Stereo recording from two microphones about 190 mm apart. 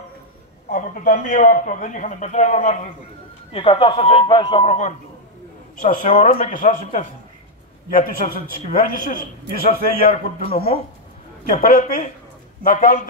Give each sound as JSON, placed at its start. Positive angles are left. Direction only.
{"t": 0.7, "sound": "a man's voice", "side_deg": 45}
{"t": 11.5, "sound": "a man's voice", "side_deg": 45}